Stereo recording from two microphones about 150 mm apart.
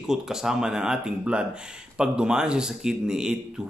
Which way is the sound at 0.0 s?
5° right (ahead or behind).